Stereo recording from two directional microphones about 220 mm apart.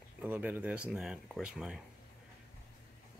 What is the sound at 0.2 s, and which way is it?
Speech, 5° right (ahead or behind).